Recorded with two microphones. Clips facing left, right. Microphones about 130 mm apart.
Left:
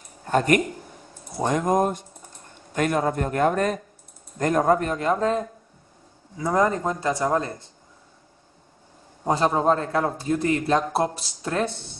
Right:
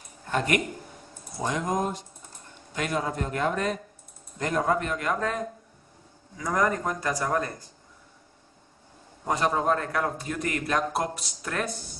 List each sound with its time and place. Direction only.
0.3 s a man's voice: 45° left (ahead or behind); by 7.7 s 25° left (ahead or behind)
9.2 s a man's voice: 25° left (ahead or behind)